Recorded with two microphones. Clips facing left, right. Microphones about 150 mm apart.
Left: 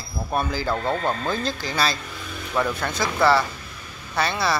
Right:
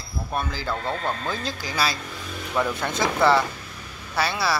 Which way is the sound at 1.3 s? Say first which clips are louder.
Left 4 dB; 5° right (ahead or behind).